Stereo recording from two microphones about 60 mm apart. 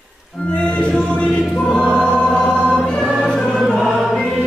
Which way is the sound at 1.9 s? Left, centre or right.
Centre.